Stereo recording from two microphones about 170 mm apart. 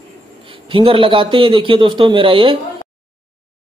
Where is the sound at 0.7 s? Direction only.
30° right (ahead or behind).